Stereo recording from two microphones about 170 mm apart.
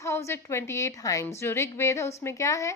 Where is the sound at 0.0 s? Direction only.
15° left (ahead or behind).